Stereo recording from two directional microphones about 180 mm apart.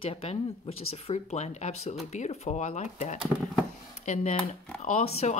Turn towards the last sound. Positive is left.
turn(degrees=35)  # may be behind; listen again after turning